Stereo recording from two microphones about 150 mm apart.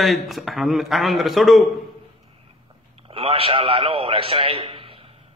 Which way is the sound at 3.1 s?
40° right (ahead or behind).